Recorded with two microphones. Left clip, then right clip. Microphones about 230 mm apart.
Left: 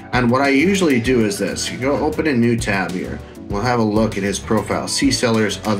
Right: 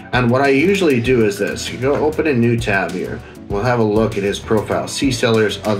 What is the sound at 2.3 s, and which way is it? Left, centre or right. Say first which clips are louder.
Speech: right 2 dB; left.